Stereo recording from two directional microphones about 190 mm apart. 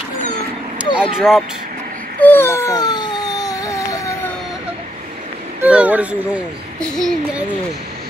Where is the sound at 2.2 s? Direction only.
10° left (ahead or behind).